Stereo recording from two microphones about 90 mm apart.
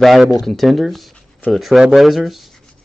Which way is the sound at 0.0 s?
Centre (ahead or behind).